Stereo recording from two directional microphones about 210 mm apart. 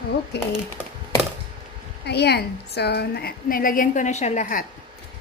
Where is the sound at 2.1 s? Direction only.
50° left (ahead or behind).